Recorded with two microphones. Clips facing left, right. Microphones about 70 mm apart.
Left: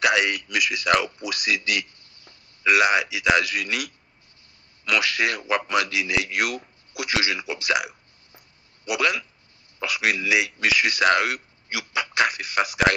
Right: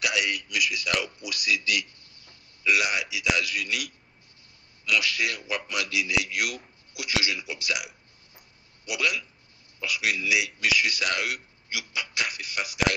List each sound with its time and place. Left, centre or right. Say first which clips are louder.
0.0 s a man's voice: left 7 dB; left
5.7 s a man's voice: left 5 dB; left